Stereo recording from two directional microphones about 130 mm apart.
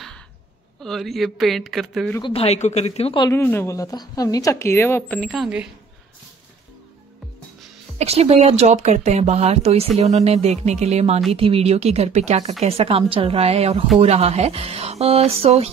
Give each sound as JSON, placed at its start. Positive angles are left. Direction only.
{"t": 0.8, "sound": "speech", "side_deg": 0}
{"t": 2.2, "sound": "speech", "side_deg": 50}
{"t": 3.2, "sound": "speech", "side_deg": 25}
{"t": 5.3, "sound": "speech", "side_deg": -5}
{"t": 8.0, "sound": "speech", "side_deg": -55}
{"t": 11.3, "sound": "speech", "side_deg": -45}
{"t": 12.6, "sound": "speech", "side_deg": -50}